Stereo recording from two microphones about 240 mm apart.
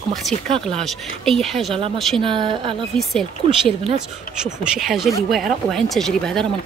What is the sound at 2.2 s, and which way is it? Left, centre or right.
Speech, right.